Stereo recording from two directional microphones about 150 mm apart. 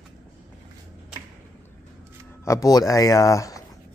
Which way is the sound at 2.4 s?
20° left (ahead or behind).